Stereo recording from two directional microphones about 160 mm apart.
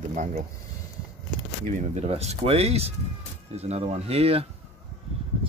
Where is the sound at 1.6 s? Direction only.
50° right (ahead or behind).